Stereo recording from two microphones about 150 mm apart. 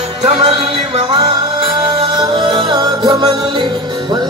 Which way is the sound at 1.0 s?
35° right (ahead or behind).